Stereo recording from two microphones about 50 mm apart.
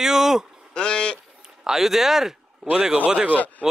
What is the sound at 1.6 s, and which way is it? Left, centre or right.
Speech, centre.